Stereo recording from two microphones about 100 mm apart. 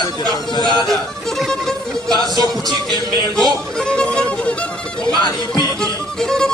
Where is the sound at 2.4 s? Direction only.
40° right (ahead or behind).